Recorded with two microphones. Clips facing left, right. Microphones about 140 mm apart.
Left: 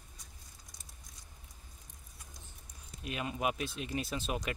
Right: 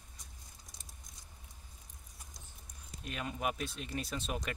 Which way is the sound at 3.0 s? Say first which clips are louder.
Left 2 dB; 5° left (ahead or behind).